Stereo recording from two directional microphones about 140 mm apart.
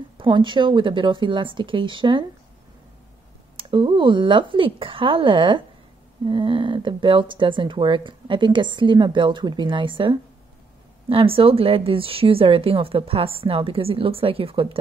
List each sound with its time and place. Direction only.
0.2 s speech: 35° right (ahead or behind)
3.5 s speech: 35° right (ahead or behind)